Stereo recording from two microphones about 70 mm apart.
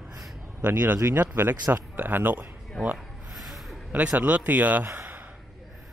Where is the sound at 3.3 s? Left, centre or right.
Centre.